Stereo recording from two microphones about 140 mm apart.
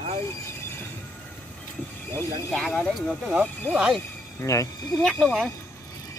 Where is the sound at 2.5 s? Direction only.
5° left (ahead or behind).